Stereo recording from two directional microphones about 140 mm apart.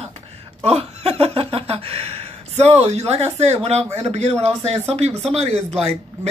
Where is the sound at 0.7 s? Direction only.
45° right (ahead or behind).